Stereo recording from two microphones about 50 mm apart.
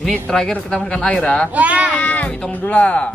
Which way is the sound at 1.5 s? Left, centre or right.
Right.